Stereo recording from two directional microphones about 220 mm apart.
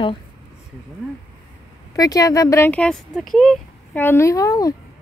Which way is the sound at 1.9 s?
15° left (ahead or behind).